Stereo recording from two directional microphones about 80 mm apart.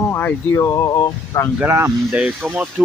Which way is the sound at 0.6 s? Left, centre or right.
Left.